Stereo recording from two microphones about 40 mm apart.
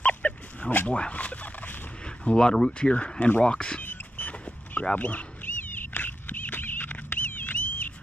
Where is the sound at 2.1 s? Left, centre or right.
Left.